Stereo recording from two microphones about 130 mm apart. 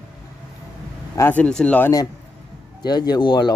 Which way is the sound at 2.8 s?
30° left (ahead or behind).